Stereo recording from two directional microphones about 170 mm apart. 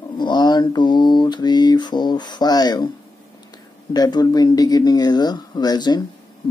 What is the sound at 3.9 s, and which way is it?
Speech, 25° left (ahead or behind).